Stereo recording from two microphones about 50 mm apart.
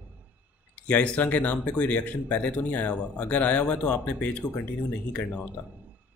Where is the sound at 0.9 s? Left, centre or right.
Left.